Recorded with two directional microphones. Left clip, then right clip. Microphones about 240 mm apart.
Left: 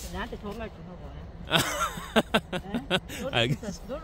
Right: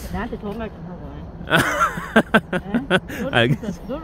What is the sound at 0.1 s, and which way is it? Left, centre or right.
Speech, left.